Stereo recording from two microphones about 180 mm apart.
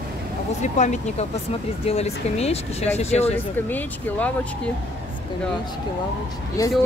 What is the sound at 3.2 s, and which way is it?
Speech, 10° left (ahead or behind).